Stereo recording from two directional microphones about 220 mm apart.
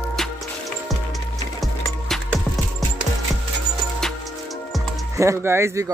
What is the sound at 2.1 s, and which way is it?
Music, centre (ahead or behind).